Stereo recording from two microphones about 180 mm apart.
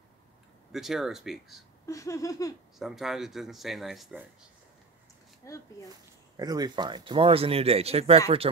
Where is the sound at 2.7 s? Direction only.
Centre (ahead or behind).